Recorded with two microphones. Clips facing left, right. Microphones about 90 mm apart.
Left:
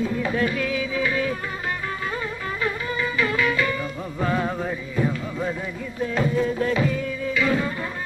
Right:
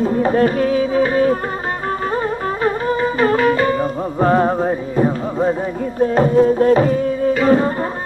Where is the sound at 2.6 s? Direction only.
45° right (ahead or behind).